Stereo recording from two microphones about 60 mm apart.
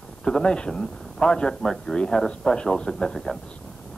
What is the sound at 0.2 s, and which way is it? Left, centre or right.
Speech, centre.